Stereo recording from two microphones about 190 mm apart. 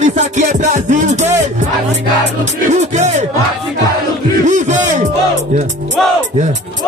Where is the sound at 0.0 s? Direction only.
35° right (ahead or behind).